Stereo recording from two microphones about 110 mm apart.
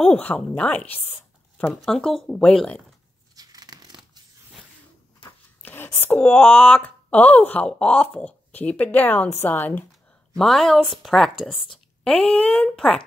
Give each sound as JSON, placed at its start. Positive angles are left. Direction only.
{"t": 0.0, "sound": "speech", "side_deg": 10}
{"t": 1.7, "sound": "speech", "side_deg": 5}
{"t": 3.3, "sound": "tearing", "side_deg": -35}
{"t": 5.6, "sound": "speech", "side_deg": 20}
{"t": 10.3, "sound": "speech", "side_deg": 0}